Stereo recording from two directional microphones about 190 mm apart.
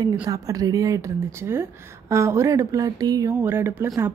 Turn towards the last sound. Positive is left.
turn(degrees=-10)  # may be behind; listen again after turning